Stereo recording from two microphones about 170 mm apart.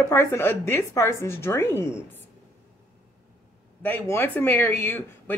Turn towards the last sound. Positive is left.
turn(degrees=10)  # may be behind; listen again after turning